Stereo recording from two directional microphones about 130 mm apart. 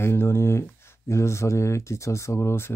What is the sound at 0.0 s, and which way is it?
Speech, 20° left (ahead or behind).